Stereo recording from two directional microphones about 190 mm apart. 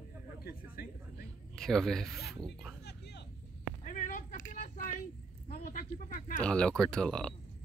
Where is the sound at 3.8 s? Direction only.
45° left (ahead or behind).